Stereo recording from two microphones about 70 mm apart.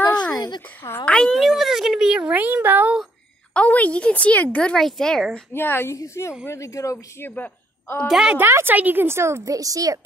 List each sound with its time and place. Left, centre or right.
1.0 s speech: centre
1.5 s speech: centre; by 2.9 s right
3.5 s speech: centre
4.7 s speech: centre
5.5 s a woman's voice: left
7.2 s a woman's voice: left
8.1 s speech: centre
8.4 s speech: right
9.5 s speech: right